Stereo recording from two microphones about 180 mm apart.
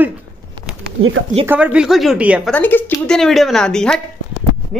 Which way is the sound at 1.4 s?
10° right (ahead or behind).